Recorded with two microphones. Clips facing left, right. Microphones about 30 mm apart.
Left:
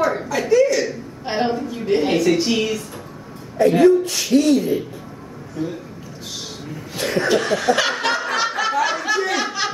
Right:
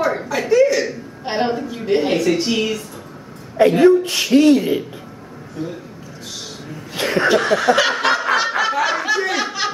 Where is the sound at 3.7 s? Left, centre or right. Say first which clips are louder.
Even; right.